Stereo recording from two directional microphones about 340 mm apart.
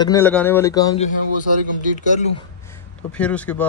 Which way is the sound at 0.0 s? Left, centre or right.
Centre.